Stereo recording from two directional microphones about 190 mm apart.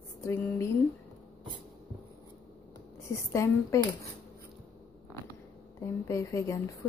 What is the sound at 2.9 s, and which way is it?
Speech, 15° left (ahead or behind).